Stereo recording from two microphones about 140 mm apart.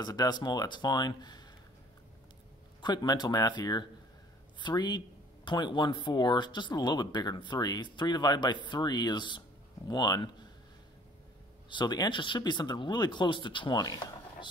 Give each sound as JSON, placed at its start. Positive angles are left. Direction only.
{"t": 0.0, "sound": "speech", "side_deg": 30}
{"t": 2.8, "sound": "speech", "side_deg": 30}
{"t": 11.7, "sound": "speech", "side_deg": 30}